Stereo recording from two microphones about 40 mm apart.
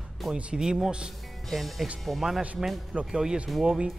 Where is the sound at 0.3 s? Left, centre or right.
Right.